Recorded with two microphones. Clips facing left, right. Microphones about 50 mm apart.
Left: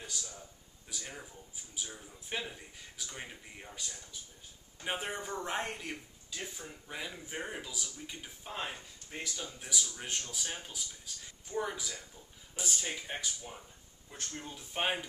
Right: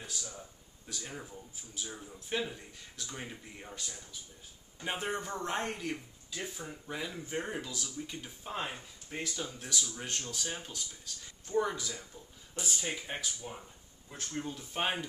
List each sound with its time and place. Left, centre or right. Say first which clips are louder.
0.0 s a sound: right 1 dB; centre
0.8 s speech: right 1 dB; centre
1.1 s speech: right 3 dB; centre
1.9 s speech: right 4 dB; centre
2.1 s speech: right 4 dB; centre
8.5 s speech: right 2 dB; centre
9.6 s speech: right 1 dB; centre
14.4 s speech: even; centre